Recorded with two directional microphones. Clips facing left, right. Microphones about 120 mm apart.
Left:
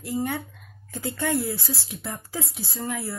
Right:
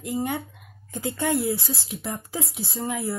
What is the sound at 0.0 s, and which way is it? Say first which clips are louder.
Speech: even; 20° right (ahead or behind).